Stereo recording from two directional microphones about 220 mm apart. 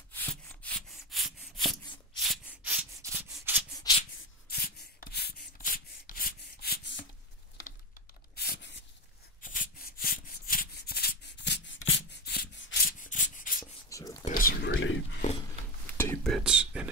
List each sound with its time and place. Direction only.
0.2 s rub: 5° left (ahead or behind)
3.9 s shuffling cards: 20° left (ahead or behind)
4.5 s rub: 45° left (ahead or behind)
8.4 s a sound: 50° left (ahead or behind)
9.4 s rub: 35° left (ahead or behind)
12.8 s rub: 40° left (ahead or behind)
13.8 s whispering: 15° left (ahead or behind)
14.2 s whispering: 40° left (ahead or behind)
14.7 s whispering: 60° left (ahead or behind)
15.2 s a sound: 35° left (ahead or behind)
15.9 s whispering: 10° left (ahead or behind)
16.4 s a sound: 5° right (ahead or behind)